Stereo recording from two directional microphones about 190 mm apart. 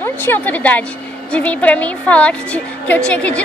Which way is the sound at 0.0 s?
10° left (ahead or behind).